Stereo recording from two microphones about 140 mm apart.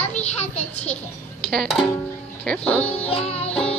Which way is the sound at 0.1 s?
50° left (ahead or behind).